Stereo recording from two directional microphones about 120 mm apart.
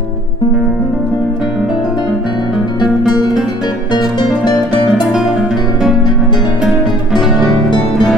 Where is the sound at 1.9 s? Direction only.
40° left (ahead or behind).